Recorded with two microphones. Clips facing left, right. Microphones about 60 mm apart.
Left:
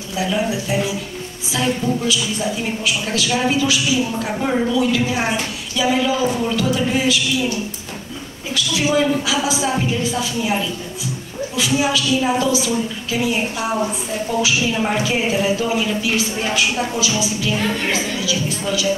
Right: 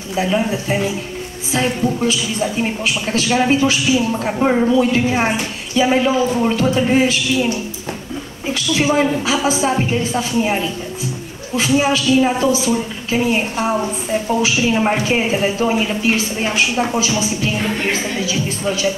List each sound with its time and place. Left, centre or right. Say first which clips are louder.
0.1 s speech: right 3 dB; right
8.5 s speech: right 2 dB; right